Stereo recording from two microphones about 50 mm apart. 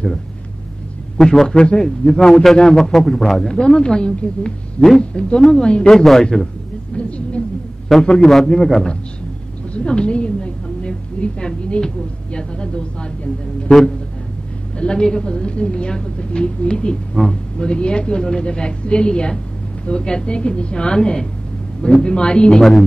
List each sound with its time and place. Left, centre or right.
1.1 s a man's voice: centre
1.5 s a woman's voice: centre
2.1 s a man's voice: centre
7.0 s a sound: left
7.9 s a man's voice: centre
9.8 s a sound: centre
12.3 s a woman's voice: centre
14.8 s a woman's voice: centre
22.5 s a man's voice: centre